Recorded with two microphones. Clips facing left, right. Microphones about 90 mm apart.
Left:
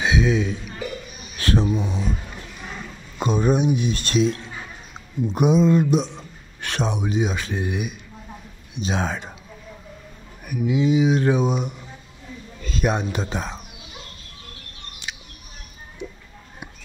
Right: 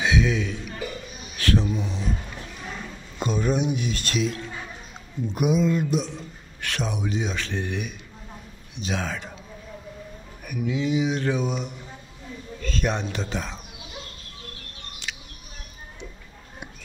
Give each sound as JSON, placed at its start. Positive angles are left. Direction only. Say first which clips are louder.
{"t": 0.0, "sound": "a man's voice", "louder": "left 3 dB", "side_deg": 25}
{"t": 1.4, "sound": "a sound", "louder": "left 2 dB", "side_deg": 20}
{"t": 1.7, "sound": "speech", "louder": "left 4 dB", "side_deg": 15}
{"t": 3.2, "sound": "a man's voice", "louder": "left 4 dB", "side_deg": 20}
{"t": 8.7, "sound": "a man's voice", "louder": "left 4 dB", "side_deg": 20}
{"t": 10.7, "sound": "a man's voice", "louder": "left 6 dB", "side_deg": 20}
{"t": 15.1, "sound": "a sound", "louder": "left 1 dB", "side_deg": 20}